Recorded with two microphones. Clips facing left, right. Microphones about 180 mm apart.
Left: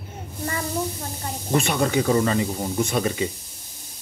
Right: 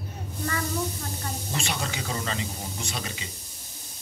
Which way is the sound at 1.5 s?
55° left (ahead or behind).